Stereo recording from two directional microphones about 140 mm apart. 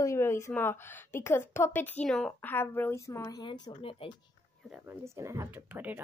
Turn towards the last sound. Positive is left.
turn(degrees=-15)  # may be behind; listen again after turning